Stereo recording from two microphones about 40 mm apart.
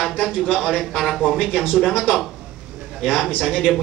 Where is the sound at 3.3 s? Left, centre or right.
Right.